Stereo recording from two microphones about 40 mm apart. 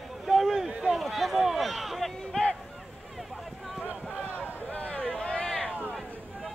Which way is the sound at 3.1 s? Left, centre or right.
Centre.